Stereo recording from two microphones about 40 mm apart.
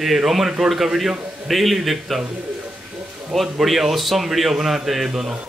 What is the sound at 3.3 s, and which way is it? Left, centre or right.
A man's voice, centre.